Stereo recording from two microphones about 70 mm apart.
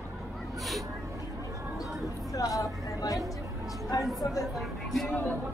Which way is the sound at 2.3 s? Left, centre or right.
Left.